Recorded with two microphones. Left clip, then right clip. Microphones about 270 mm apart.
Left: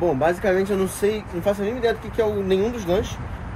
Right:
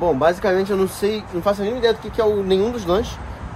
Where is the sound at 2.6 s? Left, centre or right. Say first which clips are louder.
Right 3 dB; right.